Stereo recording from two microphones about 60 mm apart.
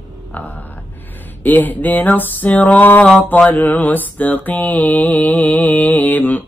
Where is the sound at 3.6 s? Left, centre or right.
Left.